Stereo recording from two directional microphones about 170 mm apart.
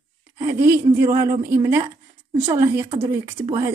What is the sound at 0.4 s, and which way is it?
Speech, 15° right (ahead or behind).